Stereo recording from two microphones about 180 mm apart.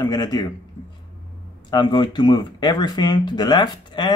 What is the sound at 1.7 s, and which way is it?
Speech, 25° left (ahead or behind).